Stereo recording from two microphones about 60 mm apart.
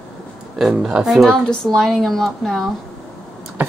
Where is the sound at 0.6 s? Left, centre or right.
Centre.